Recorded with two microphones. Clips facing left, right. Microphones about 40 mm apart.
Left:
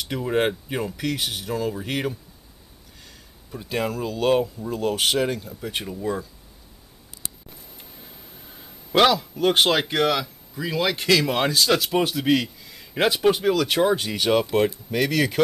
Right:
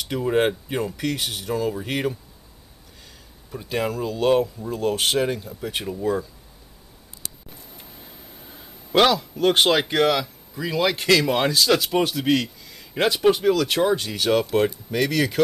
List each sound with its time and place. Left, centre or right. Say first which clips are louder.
0.0 s a man's voice: right 2 dB; centre
3.5 s a man's voice: right 1 dB; centre
8.5 s a man's voice: even; centre